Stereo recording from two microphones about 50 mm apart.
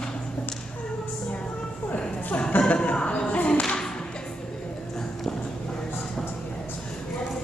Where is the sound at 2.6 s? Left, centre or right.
Left.